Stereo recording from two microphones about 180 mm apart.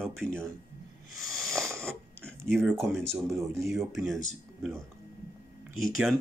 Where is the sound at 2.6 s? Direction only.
15° right (ahead or behind).